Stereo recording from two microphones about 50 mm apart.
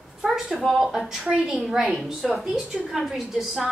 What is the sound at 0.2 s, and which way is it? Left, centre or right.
A woman's voice, centre.